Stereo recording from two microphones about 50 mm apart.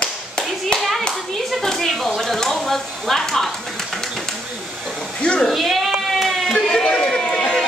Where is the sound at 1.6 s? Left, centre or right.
Centre.